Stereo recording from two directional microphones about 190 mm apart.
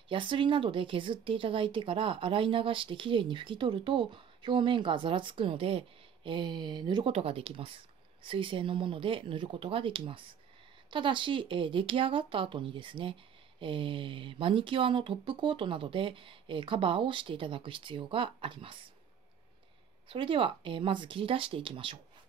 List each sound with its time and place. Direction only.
0.1 s speech: 25° right (ahead or behind)
20.1 s speech: 25° right (ahead or behind)